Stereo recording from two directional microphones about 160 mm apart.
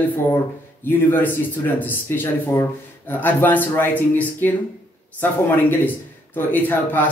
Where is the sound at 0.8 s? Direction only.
10° left (ahead or behind).